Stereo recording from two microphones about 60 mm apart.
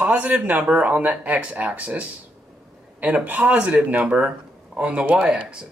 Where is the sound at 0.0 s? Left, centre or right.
Right.